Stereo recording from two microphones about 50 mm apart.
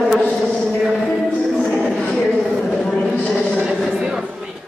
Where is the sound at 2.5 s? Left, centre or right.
Centre.